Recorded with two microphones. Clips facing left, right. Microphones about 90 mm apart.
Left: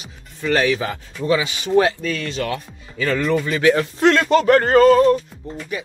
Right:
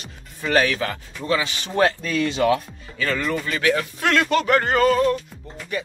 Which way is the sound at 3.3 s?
25° left (ahead or behind).